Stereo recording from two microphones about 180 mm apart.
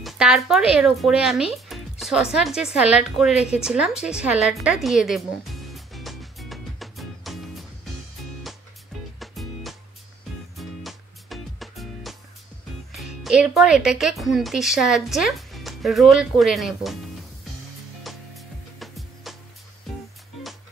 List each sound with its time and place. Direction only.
0.0 s a woman's voice: 5° right (ahead or behind)
3.4 s music: 5° right (ahead or behind)
9.2 s music: centre (ahead or behind)
12.9 s speech: centre (ahead or behind)
18.0 s music: centre (ahead or behind)